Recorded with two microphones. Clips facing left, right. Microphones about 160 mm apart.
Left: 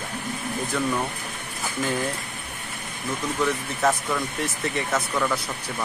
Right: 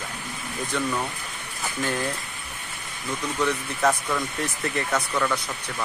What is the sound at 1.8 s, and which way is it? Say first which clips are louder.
Speech: left 1 dB; centre (ahead or behind).